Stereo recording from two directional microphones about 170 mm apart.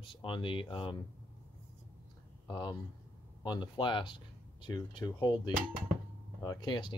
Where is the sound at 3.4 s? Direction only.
25° left (ahead or behind).